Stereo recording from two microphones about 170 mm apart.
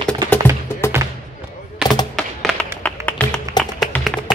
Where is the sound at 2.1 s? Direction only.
5° left (ahead or behind).